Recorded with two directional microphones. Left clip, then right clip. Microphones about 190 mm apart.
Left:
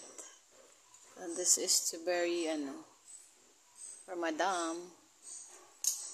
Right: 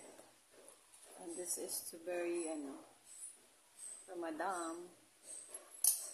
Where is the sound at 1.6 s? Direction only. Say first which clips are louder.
Left 12 dB; 45° left (ahead or behind).